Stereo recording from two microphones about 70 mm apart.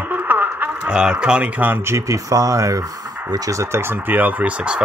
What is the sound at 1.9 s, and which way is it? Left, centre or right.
Speech, right.